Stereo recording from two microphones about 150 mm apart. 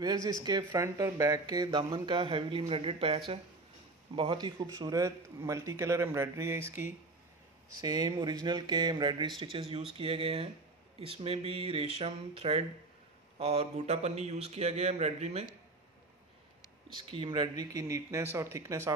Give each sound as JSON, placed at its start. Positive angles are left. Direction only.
{"t": 0.0, "sound": "a man's voice", "side_deg": -25}
{"t": 7.8, "sound": "a man's voice", "side_deg": -25}
{"t": 16.9, "sound": "a man's voice", "side_deg": -30}